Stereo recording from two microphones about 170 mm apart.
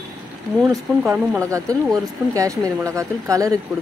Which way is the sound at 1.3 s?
20° right (ahead or behind).